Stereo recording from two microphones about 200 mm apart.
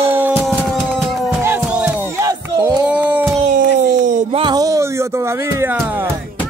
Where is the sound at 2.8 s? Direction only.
5° right (ahead or behind).